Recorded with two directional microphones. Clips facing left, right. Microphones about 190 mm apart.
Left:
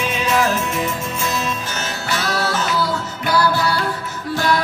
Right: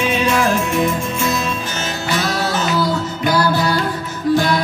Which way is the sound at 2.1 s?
15° right (ahead or behind).